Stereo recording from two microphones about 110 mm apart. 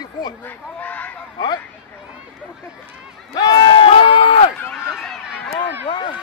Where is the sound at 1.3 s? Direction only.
40° left (ahead or behind).